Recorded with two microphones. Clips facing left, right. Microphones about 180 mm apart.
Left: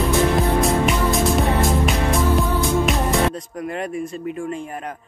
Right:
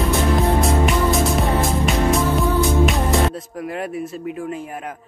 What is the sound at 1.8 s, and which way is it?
Music, centre (ahead or behind).